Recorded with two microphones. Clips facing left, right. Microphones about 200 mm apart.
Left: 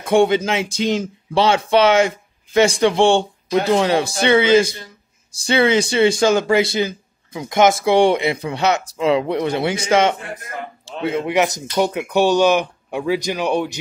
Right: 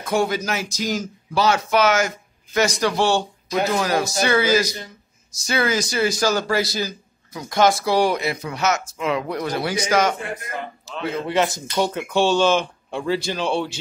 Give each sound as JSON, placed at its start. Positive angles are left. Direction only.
{"t": 0.0, "sound": "speech", "side_deg": 30}